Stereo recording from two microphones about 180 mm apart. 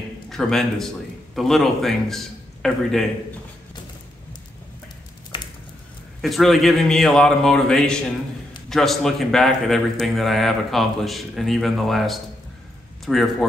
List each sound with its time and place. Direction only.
0.3 s a man's voice: centre (ahead or behind)
5.3 s a sound: 25° left (ahead or behind)
6.2 s a man's voice: centre (ahead or behind)